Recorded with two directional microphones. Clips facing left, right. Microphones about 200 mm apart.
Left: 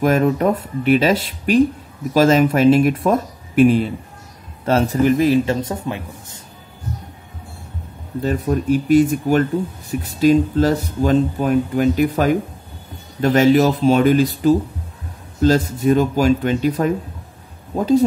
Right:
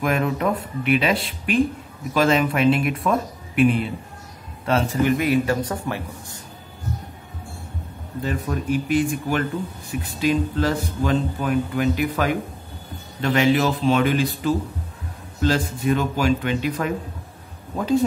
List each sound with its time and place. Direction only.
0.0 s a man's voice: 40° left (ahead or behind); by 6.4 s 20° left (ahead or behind)
8.5 s speech: 40° left (ahead or behind)